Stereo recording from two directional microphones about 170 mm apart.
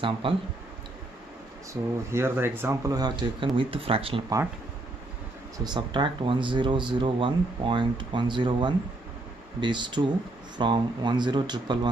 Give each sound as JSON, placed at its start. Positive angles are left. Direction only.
{"t": 0.2, "sound": "speech", "side_deg": -30}
{"t": 1.7, "sound": "speech", "side_deg": -15}
{"t": 5.6, "sound": "speech", "side_deg": -25}